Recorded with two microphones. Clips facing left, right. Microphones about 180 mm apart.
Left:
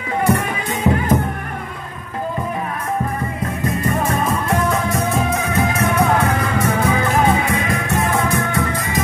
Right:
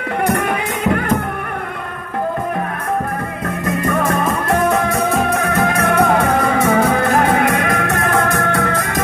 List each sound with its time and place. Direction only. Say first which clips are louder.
0.2 s music: right 1 dB; 65° right (ahead or behind)
4.9 s music: right 3 dB; 60° right (ahead or behind)